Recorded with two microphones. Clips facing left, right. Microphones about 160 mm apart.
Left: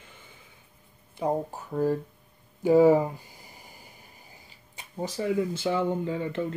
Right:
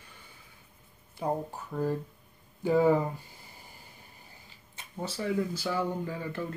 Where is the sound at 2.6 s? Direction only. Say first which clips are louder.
Left 5 dB; 20° left (ahead or behind).